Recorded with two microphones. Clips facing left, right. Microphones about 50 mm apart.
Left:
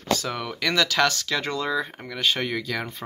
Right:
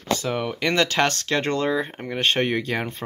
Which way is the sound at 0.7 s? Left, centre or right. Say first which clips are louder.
Even; right.